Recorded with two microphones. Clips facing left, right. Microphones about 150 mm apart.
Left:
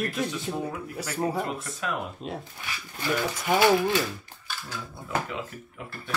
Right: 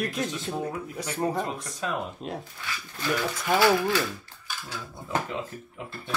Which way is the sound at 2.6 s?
15° left (ahead or behind).